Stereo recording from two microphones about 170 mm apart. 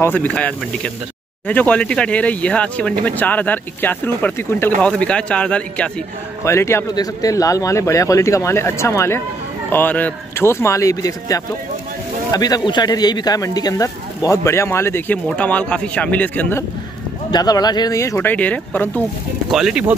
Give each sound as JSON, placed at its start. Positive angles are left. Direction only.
{"t": 0.0, "sound": "speech", "side_deg": 10}
{"t": 17.3, "sound": "speech", "side_deg": 25}
{"t": 19.5, "sound": "speech", "side_deg": -5}